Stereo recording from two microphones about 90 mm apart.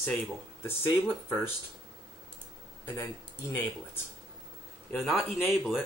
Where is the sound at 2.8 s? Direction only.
20° left (ahead or behind).